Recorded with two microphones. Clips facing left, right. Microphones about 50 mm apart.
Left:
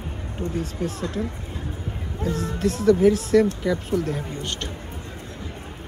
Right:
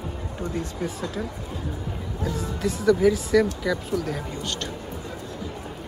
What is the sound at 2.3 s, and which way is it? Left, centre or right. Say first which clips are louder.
Speech: left 2 dB; left.